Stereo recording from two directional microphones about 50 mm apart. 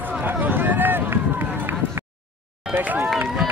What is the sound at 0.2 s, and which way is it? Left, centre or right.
Run, right.